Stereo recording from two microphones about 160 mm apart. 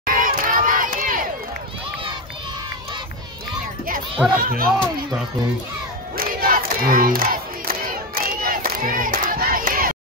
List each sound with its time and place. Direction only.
0.0 s crowd: 60° right (ahead or behind)
4.4 s speech: 65° right (ahead or behind)
6.1 s battle cry: 65° right (ahead or behind)